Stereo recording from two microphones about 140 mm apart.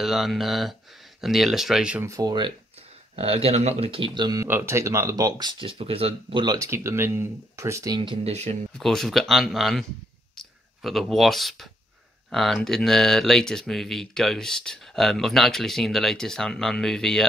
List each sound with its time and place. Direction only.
0.0 s speech: centre (ahead or behind)
2.0 s speech: 25° right (ahead or behind)
3.2 s speech: 45° right (ahead or behind)
4.5 s speech: 15° right (ahead or behind)
5.6 s speech: 40° right (ahead or behind)
6.4 s speech: 25° right (ahead or behind); by 8.5 s 50° right (ahead or behind)
8.7 s speech: centre (ahead or behind)
10.3 s whispering: centre (ahead or behind)
12.3 s speech: centre (ahead or behind)